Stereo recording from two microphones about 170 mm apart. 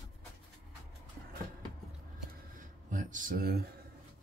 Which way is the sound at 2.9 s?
50° right (ahead or behind).